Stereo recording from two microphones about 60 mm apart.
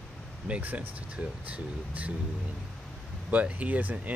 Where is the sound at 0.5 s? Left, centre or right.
Right.